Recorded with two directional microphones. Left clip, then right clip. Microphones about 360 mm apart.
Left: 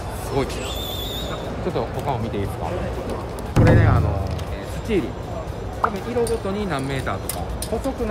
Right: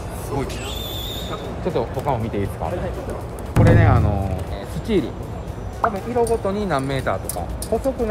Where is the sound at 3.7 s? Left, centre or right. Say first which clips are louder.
Right 2 dB; centre.